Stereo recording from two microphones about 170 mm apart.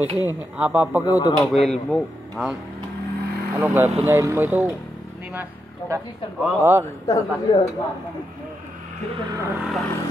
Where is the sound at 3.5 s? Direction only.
10° right (ahead or behind).